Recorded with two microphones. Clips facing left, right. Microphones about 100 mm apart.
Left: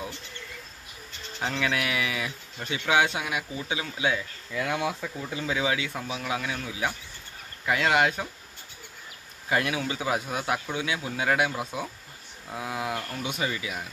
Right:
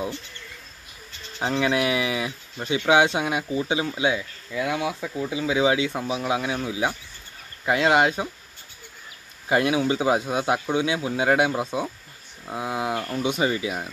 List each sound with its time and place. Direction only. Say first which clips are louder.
1.4 s speech: right 6 dB; 20° right (ahead or behind)
4.5 s speech: right 3 dB; 5° right (ahead or behind)
5.6 s speech: right 9 dB; 20° right (ahead or behind)
9.5 s speech: right 6 dB; 25° right (ahead or behind)